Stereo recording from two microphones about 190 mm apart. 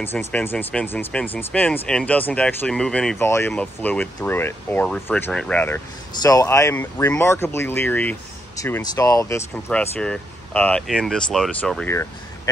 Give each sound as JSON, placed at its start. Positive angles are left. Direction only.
{"t": 0.0, "sound": "speech", "side_deg": 10}